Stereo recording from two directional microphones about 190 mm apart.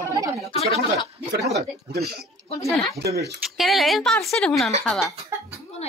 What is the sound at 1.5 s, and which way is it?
Speech, 55° right (ahead or behind).